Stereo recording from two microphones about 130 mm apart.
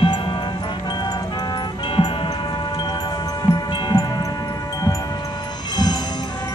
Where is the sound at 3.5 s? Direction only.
35° left (ahead or behind).